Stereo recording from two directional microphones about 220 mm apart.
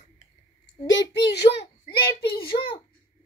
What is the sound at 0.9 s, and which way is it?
Speech, 55° left (ahead or behind).